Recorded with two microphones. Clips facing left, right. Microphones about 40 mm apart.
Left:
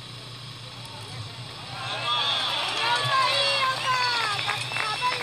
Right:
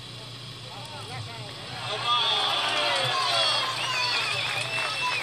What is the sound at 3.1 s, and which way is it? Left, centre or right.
Run, left.